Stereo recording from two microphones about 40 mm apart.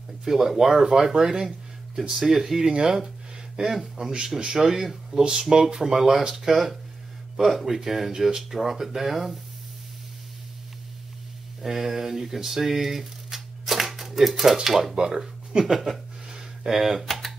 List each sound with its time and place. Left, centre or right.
0.2 s speech: centre
2.6 s speech: centre
4.4 s speech: centre
4.6 s speech: centre
5.2 s speech: centre
11.6 s speech: centre
15.0 s speech: centre
15.6 s speech: centre
16.3 s a sound: centre
17.0 s computer keyboard: centre